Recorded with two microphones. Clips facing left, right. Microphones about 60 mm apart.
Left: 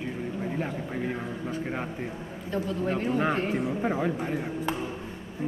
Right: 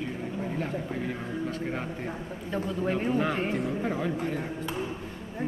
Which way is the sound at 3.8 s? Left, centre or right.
Centre.